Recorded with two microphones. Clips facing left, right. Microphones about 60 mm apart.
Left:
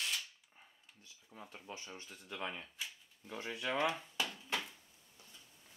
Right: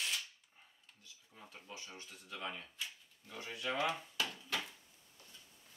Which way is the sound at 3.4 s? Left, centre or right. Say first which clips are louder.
Left 1 dB; left.